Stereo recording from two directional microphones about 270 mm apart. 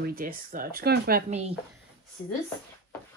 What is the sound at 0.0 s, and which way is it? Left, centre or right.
Speech, right.